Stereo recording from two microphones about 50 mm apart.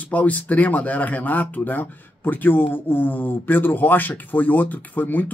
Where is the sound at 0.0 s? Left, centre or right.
Left.